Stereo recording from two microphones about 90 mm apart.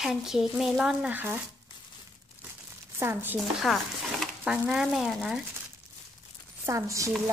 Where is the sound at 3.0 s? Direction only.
25° right (ahead or behind).